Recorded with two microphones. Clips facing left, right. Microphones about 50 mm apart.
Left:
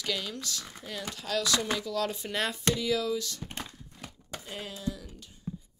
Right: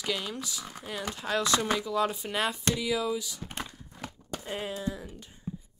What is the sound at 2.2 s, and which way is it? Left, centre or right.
Speech, centre.